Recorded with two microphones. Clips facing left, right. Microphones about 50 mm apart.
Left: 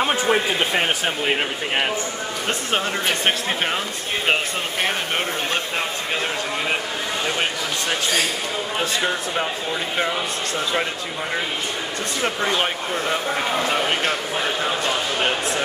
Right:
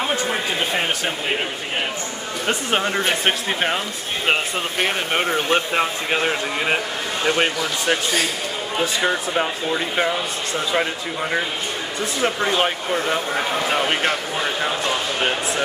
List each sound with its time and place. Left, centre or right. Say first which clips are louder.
0.0 s a sound: left 3 dB; centre
2.4 s speech: right 3 dB; centre
5.1 s speech: right 4 dB; right
12.2 s speech: right 2 dB; centre
12.5 s speech: right 2 dB; centre